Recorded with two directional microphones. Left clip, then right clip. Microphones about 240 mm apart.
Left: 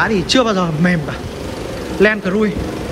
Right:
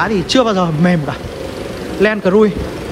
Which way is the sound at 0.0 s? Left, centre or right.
Centre.